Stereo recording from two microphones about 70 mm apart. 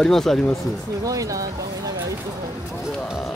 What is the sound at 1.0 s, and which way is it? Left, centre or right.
Speech, right.